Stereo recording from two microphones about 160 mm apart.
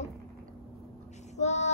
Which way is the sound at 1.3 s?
45° left (ahead or behind).